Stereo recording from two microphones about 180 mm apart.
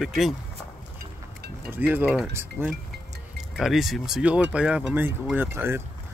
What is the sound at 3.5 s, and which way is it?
Speech, centre (ahead or behind).